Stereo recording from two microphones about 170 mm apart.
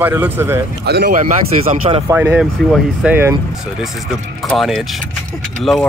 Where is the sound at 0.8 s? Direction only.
70° right (ahead or behind).